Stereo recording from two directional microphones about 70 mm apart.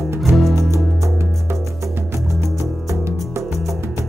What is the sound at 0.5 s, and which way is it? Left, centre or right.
Music, right.